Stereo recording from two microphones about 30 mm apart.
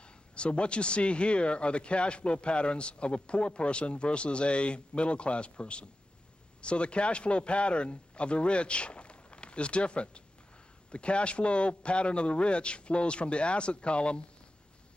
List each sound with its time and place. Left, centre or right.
0.0 s a man's voice: left